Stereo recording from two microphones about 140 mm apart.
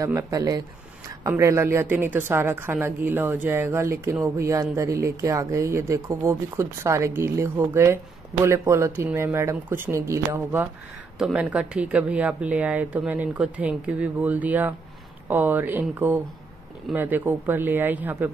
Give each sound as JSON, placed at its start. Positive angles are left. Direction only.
{"t": 0.0, "sound": "speech", "side_deg": -25}
{"t": 11.1, "sound": "speech", "side_deg": -5}